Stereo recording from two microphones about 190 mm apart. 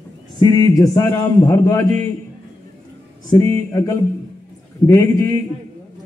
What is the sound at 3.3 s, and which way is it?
A man's voice, 15° left (ahead or behind).